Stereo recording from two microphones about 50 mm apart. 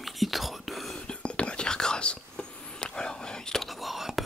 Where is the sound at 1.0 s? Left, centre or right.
Left.